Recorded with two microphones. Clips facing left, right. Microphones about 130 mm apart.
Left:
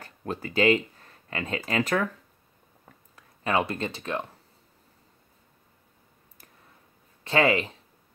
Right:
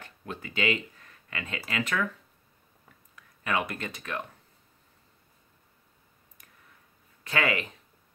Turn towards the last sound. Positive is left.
turn(degrees=30)  # may be behind; listen again after turning